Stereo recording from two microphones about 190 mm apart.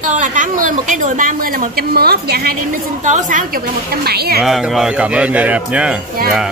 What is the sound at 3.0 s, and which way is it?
Speech, 40° right (ahead or behind).